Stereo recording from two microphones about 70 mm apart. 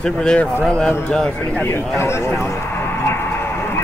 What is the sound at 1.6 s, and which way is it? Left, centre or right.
Speech, left.